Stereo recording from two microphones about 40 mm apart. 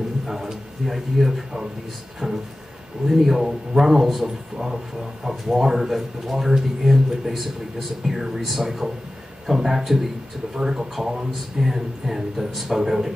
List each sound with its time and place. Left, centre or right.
0.3 s speech: centre
2.2 s a man's voice: centre
3.1 s a man's voice: centre